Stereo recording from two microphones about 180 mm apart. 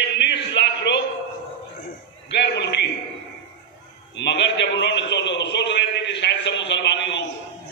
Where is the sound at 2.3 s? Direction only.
75° left (ahead or behind).